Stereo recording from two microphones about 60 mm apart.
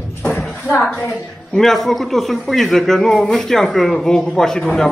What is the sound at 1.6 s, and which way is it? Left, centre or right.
A man's voice, centre.